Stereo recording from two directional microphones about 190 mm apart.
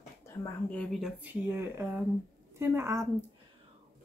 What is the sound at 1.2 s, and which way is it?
Speech, 10° right (ahead or behind).